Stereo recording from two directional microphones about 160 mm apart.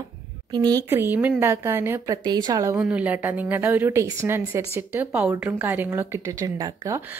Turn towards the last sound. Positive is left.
turn(degrees=-20)  # may be behind; listen again after turning